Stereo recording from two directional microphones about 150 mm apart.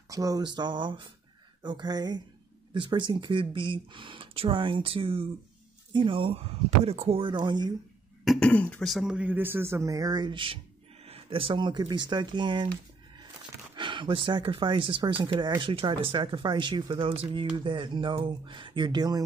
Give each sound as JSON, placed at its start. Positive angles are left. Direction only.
{"t": 0.1, "sound": "speech", "side_deg": -25}
{"t": 8.3, "sound": "speech", "side_deg": 10}
{"t": 13.7, "sound": "speech", "side_deg": -35}